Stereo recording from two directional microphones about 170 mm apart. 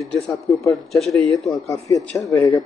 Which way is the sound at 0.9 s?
Centre (ahead or behind).